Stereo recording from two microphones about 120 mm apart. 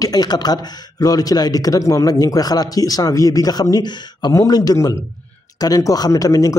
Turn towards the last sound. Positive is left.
turn(degrees=30)  # may be behind; listen again after turning